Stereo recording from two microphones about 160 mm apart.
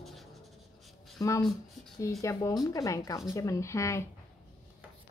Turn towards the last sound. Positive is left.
turn(degrees=20)  # may be behind; listen again after turning